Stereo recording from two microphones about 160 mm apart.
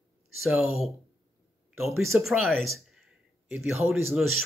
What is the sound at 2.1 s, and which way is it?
A man's voice, centre (ahead or behind).